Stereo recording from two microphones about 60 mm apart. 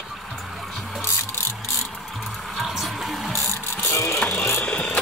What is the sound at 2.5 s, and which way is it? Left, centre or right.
Music, centre.